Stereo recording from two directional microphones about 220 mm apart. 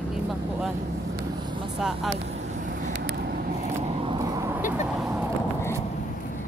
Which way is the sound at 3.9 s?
25° right (ahead or behind).